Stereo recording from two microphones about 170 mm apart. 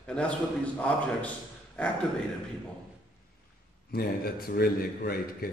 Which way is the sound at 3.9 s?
65° left (ahead or behind).